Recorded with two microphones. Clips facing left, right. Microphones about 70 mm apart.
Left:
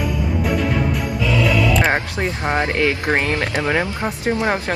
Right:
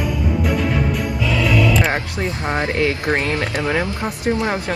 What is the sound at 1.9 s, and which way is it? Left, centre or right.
Speech, left.